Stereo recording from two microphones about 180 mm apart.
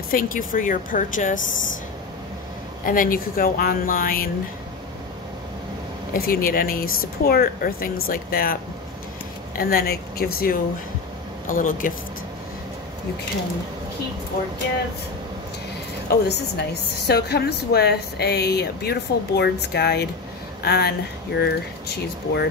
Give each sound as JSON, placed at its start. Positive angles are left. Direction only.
{"t": 0.1, "sound": "speech", "side_deg": 50}
{"t": 2.8, "sound": "speech", "side_deg": 50}
{"t": 6.1, "sound": "speech", "side_deg": 55}
{"t": 9.6, "sound": "speech", "side_deg": 55}
{"t": 16.3, "sound": "a woman's voice", "side_deg": 70}